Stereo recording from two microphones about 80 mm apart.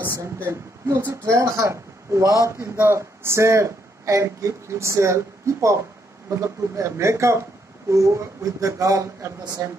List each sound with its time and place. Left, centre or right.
0.0 s speech: right
9.6 s speech: right